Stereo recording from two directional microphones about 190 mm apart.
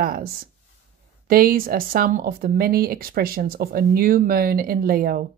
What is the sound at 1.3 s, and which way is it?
A woman's voice, 50° right (ahead or behind).